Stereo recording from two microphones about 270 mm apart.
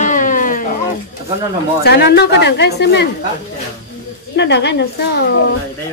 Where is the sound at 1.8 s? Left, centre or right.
Left.